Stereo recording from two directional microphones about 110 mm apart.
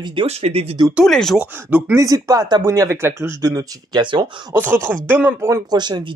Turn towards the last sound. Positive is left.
turn(degrees=-40)  # may be behind; listen again after turning